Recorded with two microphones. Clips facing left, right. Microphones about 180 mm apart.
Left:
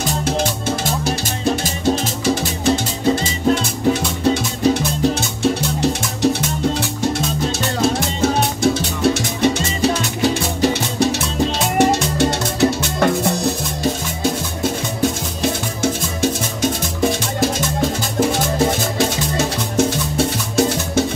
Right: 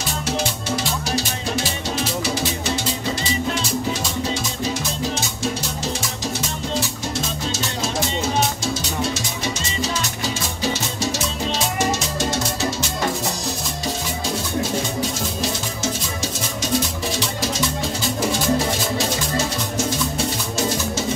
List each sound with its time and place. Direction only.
0.4 s music: 50° left (ahead or behind)
10.6 s music: 60° left (ahead or behind)
17.2 s music: 50° left (ahead or behind)